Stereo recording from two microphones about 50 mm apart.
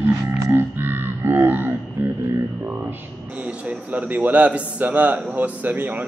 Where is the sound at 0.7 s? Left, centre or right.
Right.